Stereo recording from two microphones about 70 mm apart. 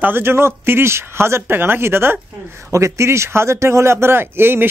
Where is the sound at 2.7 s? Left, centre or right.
Right.